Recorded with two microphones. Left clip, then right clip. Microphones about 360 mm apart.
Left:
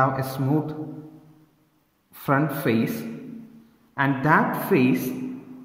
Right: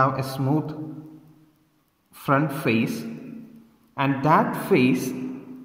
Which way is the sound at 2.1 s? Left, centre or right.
Centre.